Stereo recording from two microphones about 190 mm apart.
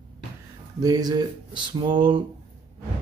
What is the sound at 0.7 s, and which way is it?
Speech, 20° right (ahead or behind).